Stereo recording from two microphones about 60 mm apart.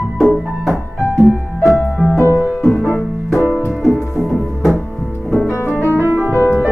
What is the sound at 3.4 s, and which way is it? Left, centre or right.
Music, left.